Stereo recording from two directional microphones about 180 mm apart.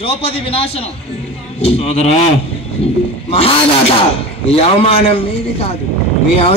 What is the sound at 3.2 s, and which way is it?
A man's voice, 30° left (ahead or behind).